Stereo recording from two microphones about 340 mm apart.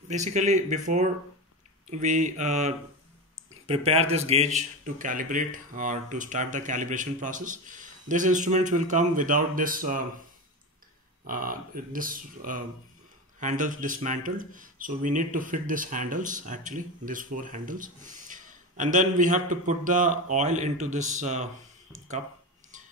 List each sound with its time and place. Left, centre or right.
0.1 s a man's voice: right
11.2 s a man's voice: right